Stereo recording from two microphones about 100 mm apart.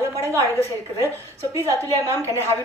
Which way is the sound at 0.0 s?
30° right (ahead or behind).